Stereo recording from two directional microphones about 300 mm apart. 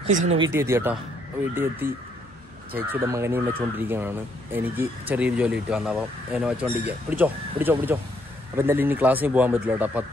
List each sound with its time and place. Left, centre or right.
0.0 s speech: right
0.5 s speech: centre